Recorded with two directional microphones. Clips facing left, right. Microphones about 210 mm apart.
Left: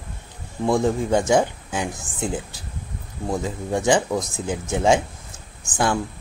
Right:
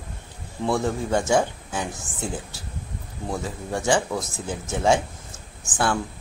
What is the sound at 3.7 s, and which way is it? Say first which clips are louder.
Speech: left 3 dB; 15° left (ahead or behind).